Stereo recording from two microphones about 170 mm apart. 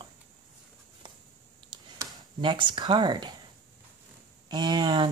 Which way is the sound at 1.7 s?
25° right (ahead or behind).